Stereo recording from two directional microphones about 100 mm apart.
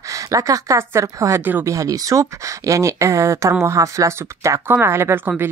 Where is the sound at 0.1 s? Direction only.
35° right (ahead or behind).